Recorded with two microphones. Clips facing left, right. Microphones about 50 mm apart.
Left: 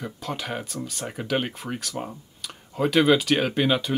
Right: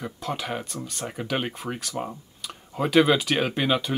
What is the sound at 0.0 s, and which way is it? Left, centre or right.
Speech, centre.